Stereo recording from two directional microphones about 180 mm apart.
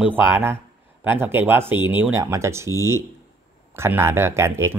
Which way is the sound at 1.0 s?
10° right (ahead or behind).